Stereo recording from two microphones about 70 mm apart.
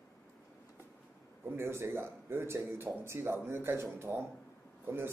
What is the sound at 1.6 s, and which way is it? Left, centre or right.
A man's voice, right.